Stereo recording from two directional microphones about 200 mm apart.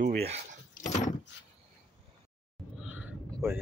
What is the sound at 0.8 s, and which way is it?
Vehicle, 35° left (ahead or behind).